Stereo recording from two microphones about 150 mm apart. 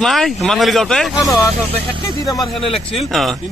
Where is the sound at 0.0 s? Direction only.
Centre (ahead or behind).